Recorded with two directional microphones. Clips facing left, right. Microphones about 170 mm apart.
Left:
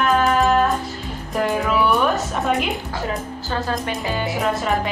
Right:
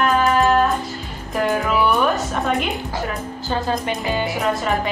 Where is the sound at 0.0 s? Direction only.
Centre (ahead or behind).